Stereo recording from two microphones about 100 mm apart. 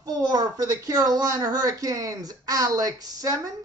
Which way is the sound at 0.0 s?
40° right (ahead or behind).